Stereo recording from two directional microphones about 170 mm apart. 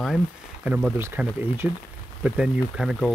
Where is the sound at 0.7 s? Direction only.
10° right (ahead or behind).